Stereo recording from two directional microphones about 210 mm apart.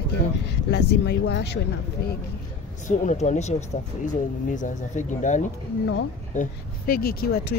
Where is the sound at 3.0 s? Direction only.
35° left (ahead or behind).